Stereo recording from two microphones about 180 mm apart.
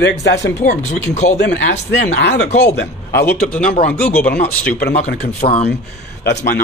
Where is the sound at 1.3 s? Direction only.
75° left (ahead or behind).